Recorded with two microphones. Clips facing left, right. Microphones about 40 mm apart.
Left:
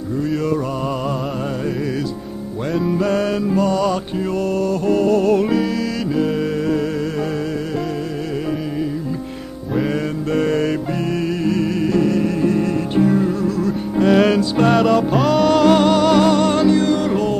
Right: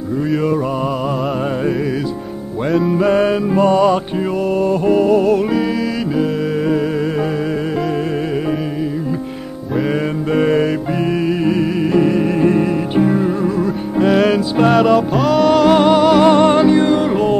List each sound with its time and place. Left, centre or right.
2.7 s music: centre
3.0 s music: right
10.3 s music: centre
13.9 s music: centre
16.3 s music: right